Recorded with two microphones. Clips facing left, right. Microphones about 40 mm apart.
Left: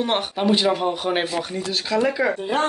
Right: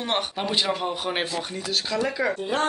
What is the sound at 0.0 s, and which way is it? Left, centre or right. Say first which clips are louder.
Speech: left 5 dB; centre.